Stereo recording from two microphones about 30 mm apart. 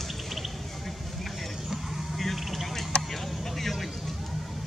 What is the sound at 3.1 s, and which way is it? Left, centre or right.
Vehicle, centre.